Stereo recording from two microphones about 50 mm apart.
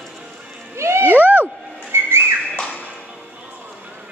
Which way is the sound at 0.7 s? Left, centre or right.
Right.